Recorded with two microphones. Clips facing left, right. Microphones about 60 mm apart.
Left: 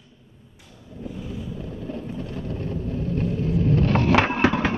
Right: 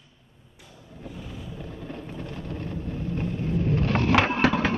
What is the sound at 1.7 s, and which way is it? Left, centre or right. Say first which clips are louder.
Vehicle: left 5 dB; right.